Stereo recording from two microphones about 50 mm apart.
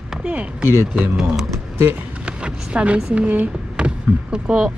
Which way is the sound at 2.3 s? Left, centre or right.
Centre.